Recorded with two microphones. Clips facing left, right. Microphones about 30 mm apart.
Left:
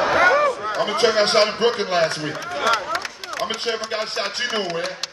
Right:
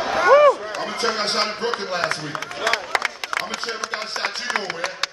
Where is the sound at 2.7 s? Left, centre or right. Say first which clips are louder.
Even; right.